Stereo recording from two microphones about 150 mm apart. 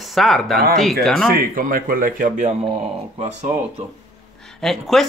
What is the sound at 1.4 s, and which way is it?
Speech, 65° right (ahead or behind).